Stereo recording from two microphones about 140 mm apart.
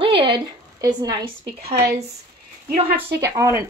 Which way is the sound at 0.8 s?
25° right (ahead or behind).